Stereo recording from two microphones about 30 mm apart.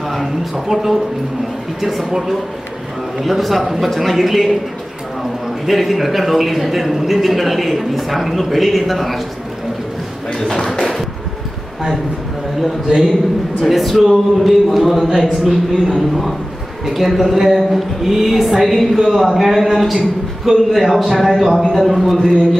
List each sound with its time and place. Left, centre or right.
0.1 s a man's voice: centre
5.7 s a man's voice: centre
10.4 s speech: left
12.6 s a man's voice: centre
16.8 s a man's voice: centre